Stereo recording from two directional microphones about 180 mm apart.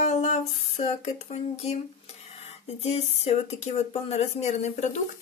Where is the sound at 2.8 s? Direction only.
35° left (ahead or behind).